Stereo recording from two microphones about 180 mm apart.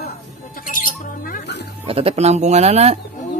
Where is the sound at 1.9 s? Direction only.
30° right (ahead or behind).